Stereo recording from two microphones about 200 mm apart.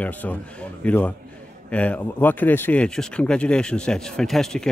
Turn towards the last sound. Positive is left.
turn(degrees=0)  # may be behind; listen again after turning